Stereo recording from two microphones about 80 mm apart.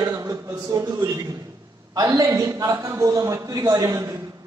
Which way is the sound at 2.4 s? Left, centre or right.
Right.